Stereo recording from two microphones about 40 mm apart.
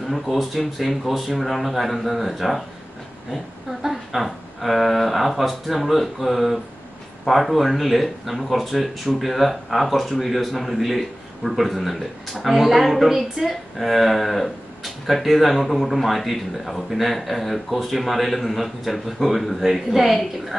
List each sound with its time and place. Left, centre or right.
0.1 s speech: centre
3.8 s speech: centre